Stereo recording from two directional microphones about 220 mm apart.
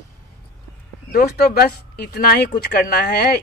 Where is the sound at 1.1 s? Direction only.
45° left (ahead or behind).